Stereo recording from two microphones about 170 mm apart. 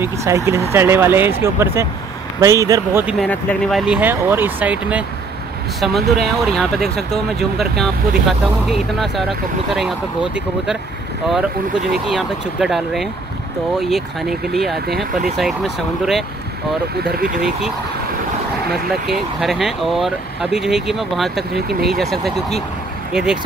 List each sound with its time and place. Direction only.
0.0 s speech: 15° right (ahead or behind)
3.2 s speech: 5° left (ahead or behind)
12.1 s speech: centre (ahead or behind)
17.0 s speech: 60° right (ahead or behind)
18.7 s speech: centre (ahead or behind)
23.1 s speech: 5° right (ahead or behind)